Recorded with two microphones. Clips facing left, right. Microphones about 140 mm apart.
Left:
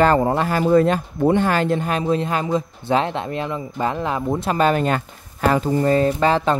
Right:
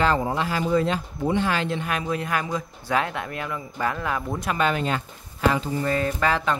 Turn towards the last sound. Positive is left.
turn(degrees=30)  # may be behind; listen again after turning